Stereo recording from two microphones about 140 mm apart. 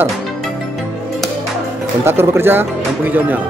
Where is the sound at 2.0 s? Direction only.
15° right (ahead or behind).